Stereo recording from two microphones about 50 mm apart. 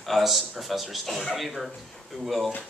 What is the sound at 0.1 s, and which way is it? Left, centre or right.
A man's voice, centre.